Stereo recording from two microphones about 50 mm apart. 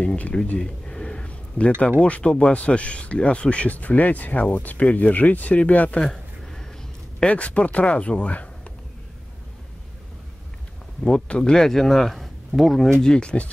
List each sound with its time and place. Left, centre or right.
0.0 s speech: left
0.6 s a sound: centre
1.8 s speech: left
6.0 s a sound: centre
7.2 s speech: left
11.1 s speech: centre